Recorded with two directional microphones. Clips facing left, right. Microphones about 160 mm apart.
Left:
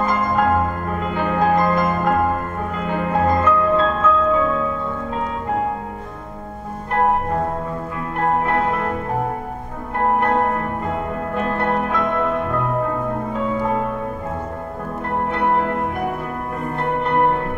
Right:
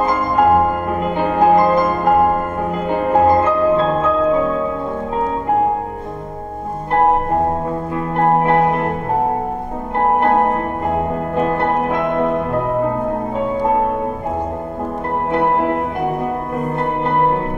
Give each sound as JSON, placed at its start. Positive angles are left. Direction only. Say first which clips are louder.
{"t": 0.0, "sound": "music", "louder": "right 4 dB", "side_deg": -20}
{"t": 8.2, "sound": "music", "louder": "right 5 dB", "side_deg": -30}
{"t": 9.9, "sound": "music", "louder": "right 3 dB", "side_deg": -30}
{"t": 15.3, "sound": "music", "louder": "right 4 dB", "side_deg": -20}